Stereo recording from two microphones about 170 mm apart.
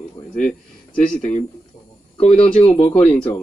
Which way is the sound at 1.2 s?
45° left (ahead or behind).